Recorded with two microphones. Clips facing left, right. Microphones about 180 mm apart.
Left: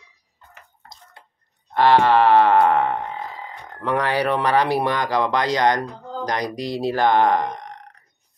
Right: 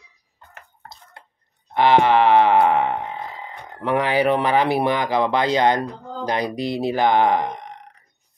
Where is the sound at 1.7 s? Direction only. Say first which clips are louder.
Even; 20° right (ahead or behind).